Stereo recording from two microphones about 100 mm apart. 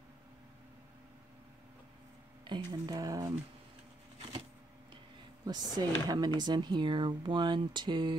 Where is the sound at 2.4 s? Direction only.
45° right (ahead or behind).